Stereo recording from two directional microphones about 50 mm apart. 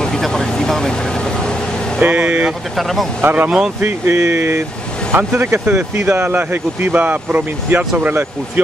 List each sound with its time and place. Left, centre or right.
0.0 s speech: centre
2.0 s speech: right
2.7 s speech: centre
3.2 s speech: right
3.4 s speech: centre
3.8 s speech: right
8.0 s speech: right